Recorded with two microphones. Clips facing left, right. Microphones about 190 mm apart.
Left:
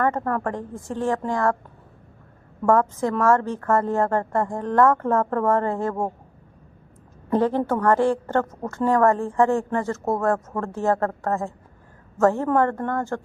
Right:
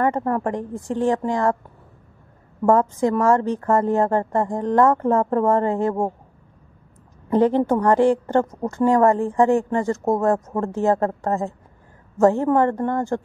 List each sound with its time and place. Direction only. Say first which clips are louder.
0.0 s a woman's voice: right 2 dB; 15° right (ahead or behind)
2.6 s a woman's voice: right 2 dB; 15° right (ahead or behind)
7.2 s a woman's voice: right 4 dB; 15° right (ahead or behind)